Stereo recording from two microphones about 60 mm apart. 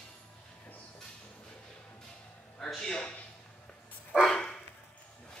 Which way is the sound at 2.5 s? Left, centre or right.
Centre.